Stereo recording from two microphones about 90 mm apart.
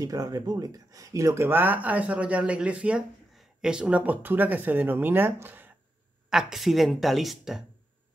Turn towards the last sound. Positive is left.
turn(degrees=0)  # may be behind; listen again after turning